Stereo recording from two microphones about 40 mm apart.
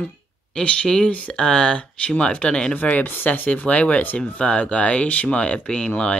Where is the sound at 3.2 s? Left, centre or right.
Left.